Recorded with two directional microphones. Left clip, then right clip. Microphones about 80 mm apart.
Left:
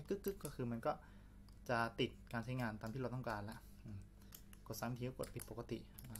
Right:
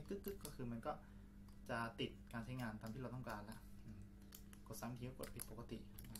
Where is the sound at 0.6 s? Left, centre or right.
Left.